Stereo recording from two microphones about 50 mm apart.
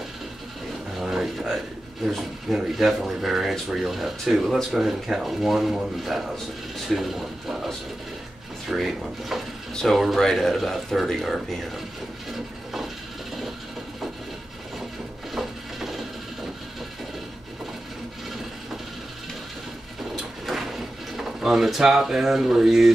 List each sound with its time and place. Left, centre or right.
1.0 s a sound: centre
2.0 s speech: centre
12.3 s wood: centre
15.3 s mechanisms: centre
20.4 s drawer open or close: centre